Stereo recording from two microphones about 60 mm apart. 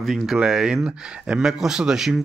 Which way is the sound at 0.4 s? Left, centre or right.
Centre.